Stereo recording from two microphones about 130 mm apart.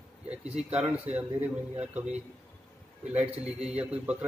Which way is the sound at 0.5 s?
55° right (ahead or behind).